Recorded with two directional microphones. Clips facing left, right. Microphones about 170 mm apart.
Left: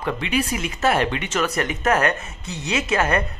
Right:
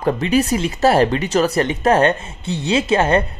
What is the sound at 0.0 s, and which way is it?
Speech, 40° right (ahead or behind).